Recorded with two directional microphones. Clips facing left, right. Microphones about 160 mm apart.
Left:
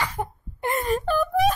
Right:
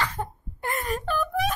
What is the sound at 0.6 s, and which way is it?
Wail, 25° left (ahead or behind).